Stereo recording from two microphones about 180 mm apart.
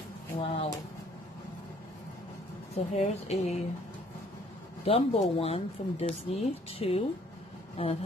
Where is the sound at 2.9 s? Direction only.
35° left (ahead or behind).